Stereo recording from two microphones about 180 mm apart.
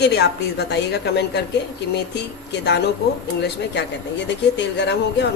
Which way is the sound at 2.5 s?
70° left (ahead or behind).